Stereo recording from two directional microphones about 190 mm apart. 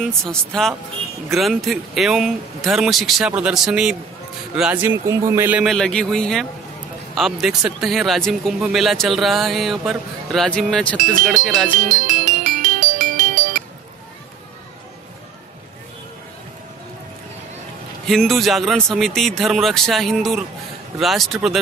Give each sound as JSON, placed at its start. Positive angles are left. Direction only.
{"t": 0.0, "sound": "speech", "side_deg": 5}
{"t": 11.8, "sound": "music", "side_deg": -40}
{"t": 18.0, "sound": "speech", "side_deg": 0}